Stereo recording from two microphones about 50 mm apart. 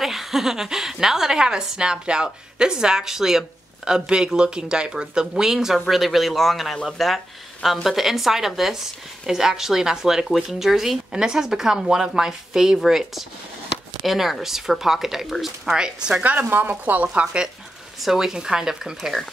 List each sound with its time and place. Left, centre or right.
0.0 s speech: centre
16.2 s speech: right
18.0 s speech: centre
18.9 s speech: centre